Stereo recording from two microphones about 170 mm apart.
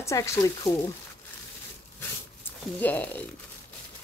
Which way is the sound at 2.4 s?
10° left (ahead or behind).